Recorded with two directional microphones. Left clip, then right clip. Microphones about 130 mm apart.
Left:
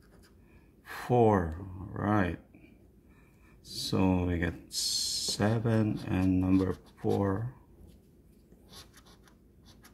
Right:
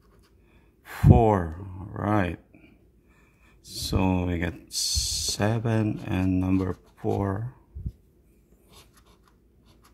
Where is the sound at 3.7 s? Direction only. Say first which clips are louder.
Right 3 dB; 55° right (ahead or behind).